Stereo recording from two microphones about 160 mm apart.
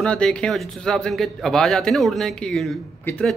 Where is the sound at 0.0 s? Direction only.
5° left (ahead or behind).